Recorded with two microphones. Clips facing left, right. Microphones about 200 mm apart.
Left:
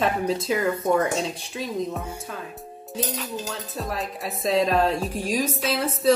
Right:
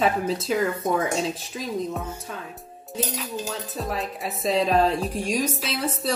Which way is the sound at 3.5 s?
Centre (ahead or behind).